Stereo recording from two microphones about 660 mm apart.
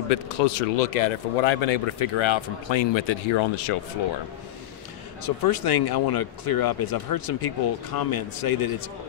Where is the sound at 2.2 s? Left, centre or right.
Left.